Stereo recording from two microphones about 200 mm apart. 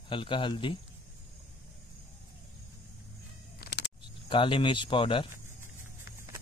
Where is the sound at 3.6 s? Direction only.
60° left (ahead or behind).